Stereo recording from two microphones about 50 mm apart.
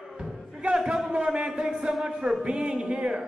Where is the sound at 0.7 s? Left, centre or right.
Centre.